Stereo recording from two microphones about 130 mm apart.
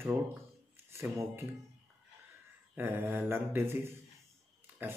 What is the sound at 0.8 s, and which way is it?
Speech, 20° right (ahead or behind).